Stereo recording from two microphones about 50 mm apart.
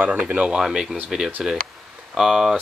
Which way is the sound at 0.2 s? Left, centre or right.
Right.